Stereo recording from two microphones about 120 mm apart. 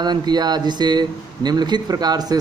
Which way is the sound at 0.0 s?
35° right (ahead or behind).